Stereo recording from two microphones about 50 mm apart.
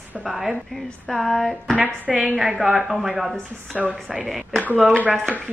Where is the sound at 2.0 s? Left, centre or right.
Right.